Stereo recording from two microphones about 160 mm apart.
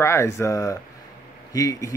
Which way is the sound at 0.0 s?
15° left (ahead or behind).